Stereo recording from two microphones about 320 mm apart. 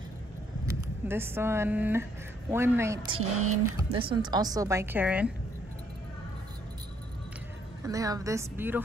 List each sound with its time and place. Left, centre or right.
1.0 s a woman's voice: centre
3.1 s speech: right
4.1 s a woman's voice: centre
7.8 s a woman's voice: centre